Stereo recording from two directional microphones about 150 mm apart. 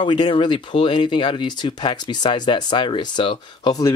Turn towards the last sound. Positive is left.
turn(degrees=25)  # may be behind; listen again after turning